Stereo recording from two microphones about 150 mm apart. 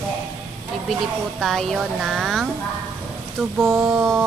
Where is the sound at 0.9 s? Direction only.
Centre (ahead or behind).